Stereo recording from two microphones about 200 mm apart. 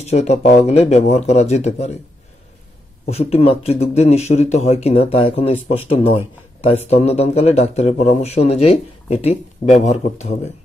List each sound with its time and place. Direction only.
0.0 s a man's voice: 35° left (ahead or behind)
3.1 s a man's voice: 30° left (ahead or behind)